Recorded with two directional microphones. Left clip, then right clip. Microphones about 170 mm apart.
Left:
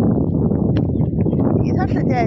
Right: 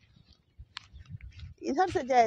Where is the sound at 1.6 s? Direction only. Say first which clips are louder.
Left 7 dB; centre (ahead or behind).